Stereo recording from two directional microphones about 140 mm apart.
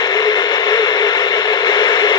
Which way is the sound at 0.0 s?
30° left (ahead or behind).